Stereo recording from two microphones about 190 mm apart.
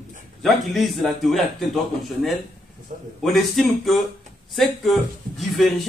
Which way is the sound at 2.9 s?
40° right (ahead or behind).